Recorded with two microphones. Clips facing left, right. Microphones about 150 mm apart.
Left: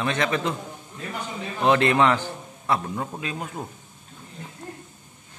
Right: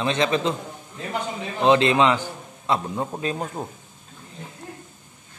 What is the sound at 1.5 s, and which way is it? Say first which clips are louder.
A man's voice: right 2 dB; 20° right (ahead or behind).